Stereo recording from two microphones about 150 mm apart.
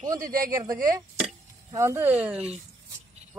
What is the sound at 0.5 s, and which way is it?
Speech, 20° right (ahead or behind).